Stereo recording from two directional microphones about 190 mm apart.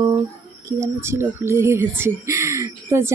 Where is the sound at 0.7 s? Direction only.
15° right (ahead or behind).